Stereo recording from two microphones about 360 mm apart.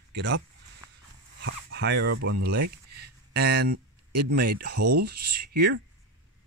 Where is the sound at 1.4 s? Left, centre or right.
Right.